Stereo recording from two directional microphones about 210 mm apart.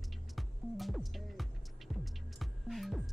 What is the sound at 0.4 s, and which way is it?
Music, centre (ahead or behind).